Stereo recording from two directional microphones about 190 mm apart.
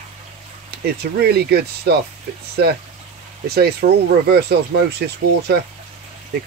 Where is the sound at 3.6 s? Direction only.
55° right (ahead or behind).